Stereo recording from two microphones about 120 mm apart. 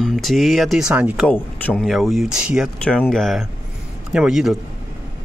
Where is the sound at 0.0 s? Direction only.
Centre (ahead or behind).